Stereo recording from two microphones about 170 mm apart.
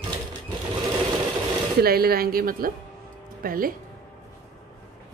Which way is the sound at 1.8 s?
65° right (ahead or behind).